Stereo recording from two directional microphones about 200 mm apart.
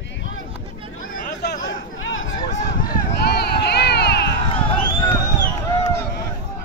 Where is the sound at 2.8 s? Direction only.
55° left (ahead or behind).